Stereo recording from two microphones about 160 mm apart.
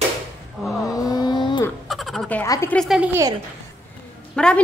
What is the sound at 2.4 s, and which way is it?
Speech, 20° left (ahead or behind).